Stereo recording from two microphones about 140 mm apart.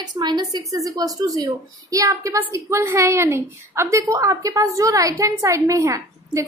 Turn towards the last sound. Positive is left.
turn(degrees=-20)  # may be behind; listen again after turning